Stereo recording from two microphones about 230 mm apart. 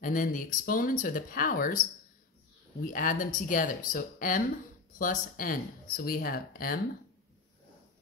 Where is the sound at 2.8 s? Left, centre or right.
Left.